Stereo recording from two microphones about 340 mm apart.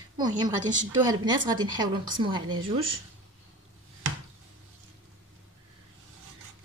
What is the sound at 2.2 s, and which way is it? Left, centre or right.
Speech, centre.